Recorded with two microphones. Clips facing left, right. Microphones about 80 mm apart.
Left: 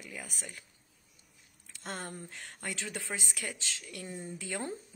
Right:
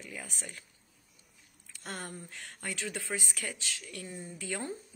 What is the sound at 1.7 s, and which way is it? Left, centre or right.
Speech, left.